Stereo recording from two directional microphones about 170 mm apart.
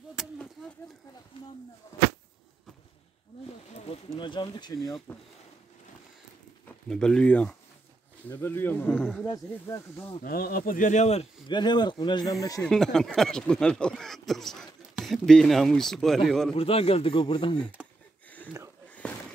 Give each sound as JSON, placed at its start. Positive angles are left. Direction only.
{"t": 0.2, "sound": "a sound", "side_deg": -5}
{"t": 3.7, "sound": "speech", "side_deg": 35}
{"t": 5.1, "sound": "speech", "side_deg": 10}
{"t": 6.9, "sound": "speech", "side_deg": 5}
{"t": 10.2, "sound": "speech", "side_deg": 60}
{"t": 12.6, "sound": "speech", "side_deg": 5}
{"t": 16.5, "sound": "speech", "side_deg": 35}
{"t": 19.0, "sound": "a sound", "side_deg": 5}